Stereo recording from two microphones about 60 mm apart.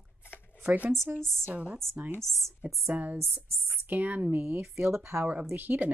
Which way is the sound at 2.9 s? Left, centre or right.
Right.